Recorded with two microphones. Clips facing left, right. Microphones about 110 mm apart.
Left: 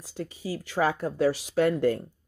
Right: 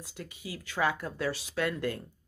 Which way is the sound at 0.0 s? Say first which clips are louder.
Left 8 dB; 30° left (ahead or behind).